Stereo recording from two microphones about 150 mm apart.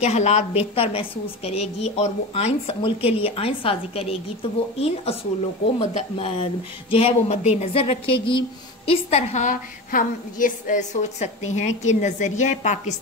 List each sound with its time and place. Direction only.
0.0 s speech: 50° left (ahead or behind)
0.7 s a woman's voice: 40° left (ahead or behind)